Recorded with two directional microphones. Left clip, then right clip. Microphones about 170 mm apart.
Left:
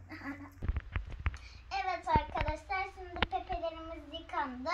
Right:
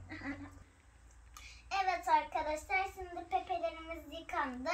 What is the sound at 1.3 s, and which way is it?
Child singing, 20° right (ahead or behind).